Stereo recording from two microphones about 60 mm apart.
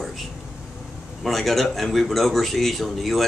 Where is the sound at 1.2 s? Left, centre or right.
Centre.